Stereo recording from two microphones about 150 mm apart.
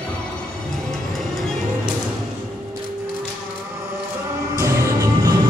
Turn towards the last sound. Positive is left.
turn(degrees=-25)  # may be behind; listen again after turning